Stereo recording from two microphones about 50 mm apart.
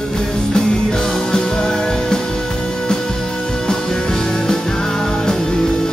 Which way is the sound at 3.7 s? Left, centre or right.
Centre.